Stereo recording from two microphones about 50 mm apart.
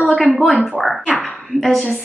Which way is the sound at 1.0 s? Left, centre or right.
Left.